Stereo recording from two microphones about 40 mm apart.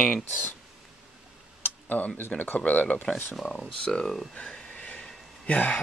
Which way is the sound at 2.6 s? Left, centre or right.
Left.